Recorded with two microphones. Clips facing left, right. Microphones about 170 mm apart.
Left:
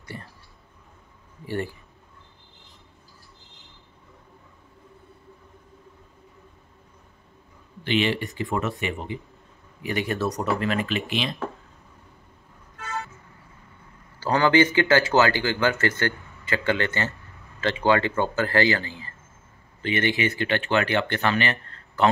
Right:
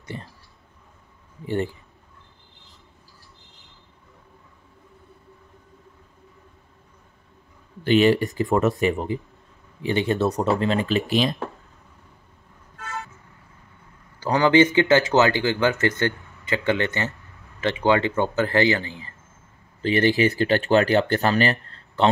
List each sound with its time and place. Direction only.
0.1 s speech: 20° right (ahead or behind)
1.4 s speech: 20° right (ahead or behind)
7.8 s speech: 40° right (ahead or behind)
9.8 s speech: 30° right (ahead or behind)
14.2 s speech: 15° right (ahead or behind)
19.8 s speech: 35° right (ahead or behind)